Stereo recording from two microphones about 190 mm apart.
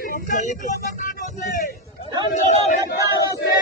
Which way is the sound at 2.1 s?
25° right (ahead or behind).